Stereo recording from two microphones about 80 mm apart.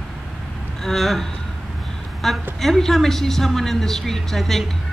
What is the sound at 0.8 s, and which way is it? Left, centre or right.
Speech, centre.